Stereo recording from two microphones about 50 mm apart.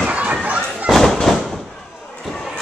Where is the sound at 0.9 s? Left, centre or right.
Centre.